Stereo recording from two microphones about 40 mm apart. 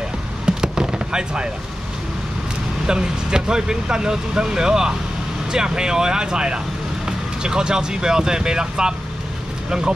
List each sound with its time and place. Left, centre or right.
0.5 s fireworks: right
2.9 s speech: right